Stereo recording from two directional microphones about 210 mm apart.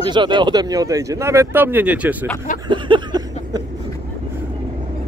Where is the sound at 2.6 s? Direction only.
25° right (ahead or behind).